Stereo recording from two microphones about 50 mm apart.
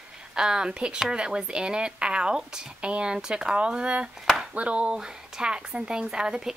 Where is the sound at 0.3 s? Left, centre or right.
Centre.